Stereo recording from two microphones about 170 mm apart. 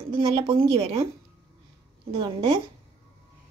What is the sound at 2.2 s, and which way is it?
Speech, 30° right (ahead or behind).